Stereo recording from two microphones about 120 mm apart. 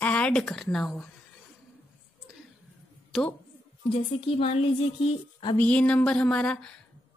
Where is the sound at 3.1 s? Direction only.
10° left (ahead or behind).